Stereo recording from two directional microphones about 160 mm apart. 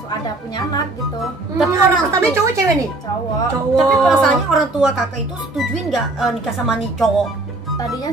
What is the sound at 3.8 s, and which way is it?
A woman's voice, centre (ahead or behind).